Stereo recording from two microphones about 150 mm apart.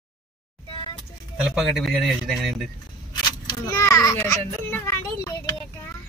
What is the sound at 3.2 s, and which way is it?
Children playing, 25° left (ahead or behind).